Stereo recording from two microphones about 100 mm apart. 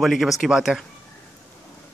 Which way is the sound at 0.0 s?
Centre (ahead or behind).